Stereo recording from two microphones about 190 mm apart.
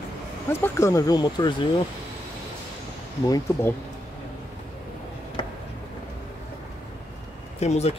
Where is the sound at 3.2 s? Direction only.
20° left (ahead or behind).